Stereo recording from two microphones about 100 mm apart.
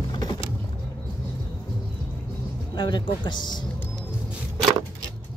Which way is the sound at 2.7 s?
55° left (ahead or behind).